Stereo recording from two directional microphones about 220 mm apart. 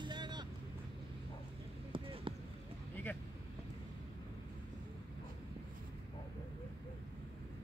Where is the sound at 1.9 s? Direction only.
25° right (ahead or behind).